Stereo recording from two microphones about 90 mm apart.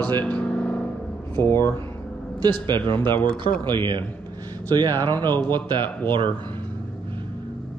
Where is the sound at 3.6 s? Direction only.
60° right (ahead or behind).